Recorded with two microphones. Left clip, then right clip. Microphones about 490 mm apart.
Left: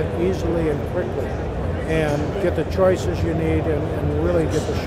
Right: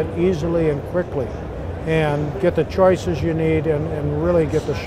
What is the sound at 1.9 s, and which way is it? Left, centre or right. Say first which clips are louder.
Speech: right 2 dB; right.